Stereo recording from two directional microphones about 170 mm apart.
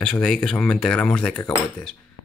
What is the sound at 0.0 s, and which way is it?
Speech, 5° left (ahead or behind).